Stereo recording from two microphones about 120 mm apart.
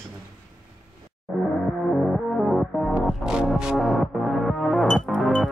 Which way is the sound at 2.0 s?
Centre (ahead or behind).